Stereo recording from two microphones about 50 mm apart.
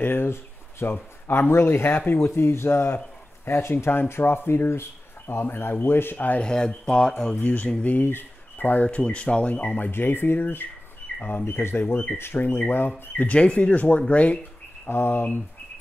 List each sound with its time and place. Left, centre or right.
0.0 s a sound: left
1.2 s speech: left
6.1 s speech: left
6.4 s speech: centre
7.4 s speech: left
8.8 s speech: left
11.1 s speech: left
11.4 s speech: left
13.2 s speech: left
14.9 s speech: left